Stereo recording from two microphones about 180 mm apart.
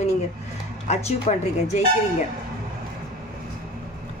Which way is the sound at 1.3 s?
40° left (ahead or behind).